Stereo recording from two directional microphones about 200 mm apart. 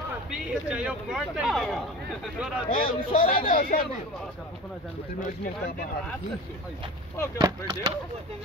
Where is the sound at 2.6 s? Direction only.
45° left (ahead or behind).